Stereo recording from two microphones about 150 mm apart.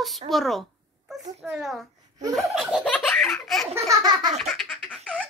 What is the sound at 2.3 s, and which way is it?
Laughter, centre (ahead or behind).